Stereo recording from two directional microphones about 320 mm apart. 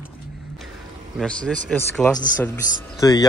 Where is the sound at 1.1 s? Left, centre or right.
Centre.